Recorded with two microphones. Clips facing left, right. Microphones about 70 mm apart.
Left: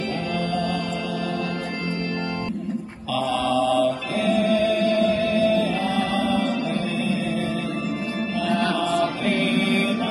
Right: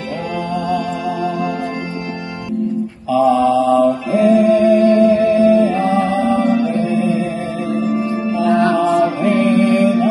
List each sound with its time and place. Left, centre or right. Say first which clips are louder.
3.2 s mantra: right 9 dB; right
8.5 s music: right 9 dB; right